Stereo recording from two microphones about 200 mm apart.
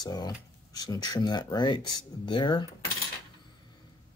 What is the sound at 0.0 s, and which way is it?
Speech, 20° left (ahead or behind).